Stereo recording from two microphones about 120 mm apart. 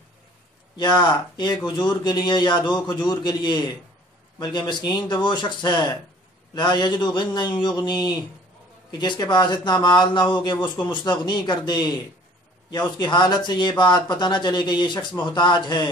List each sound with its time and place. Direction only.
0.7 s speech: 35° left (ahead or behind)
13.0 s speech: 40° left (ahead or behind)